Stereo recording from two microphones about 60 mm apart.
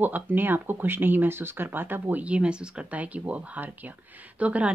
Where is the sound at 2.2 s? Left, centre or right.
Centre.